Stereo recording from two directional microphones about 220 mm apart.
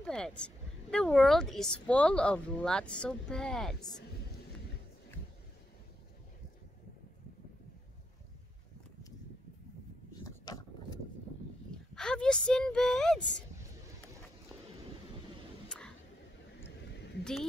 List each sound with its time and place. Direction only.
0.0 s speech: 5° left (ahead or behind)
10.4 s a sound: 20° left (ahead or behind)
11.7 s speech: 5° left (ahead or behind)
17.2 s speech: centre (ahead or behind)